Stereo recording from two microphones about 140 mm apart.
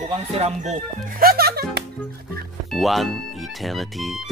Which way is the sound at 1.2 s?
90° right.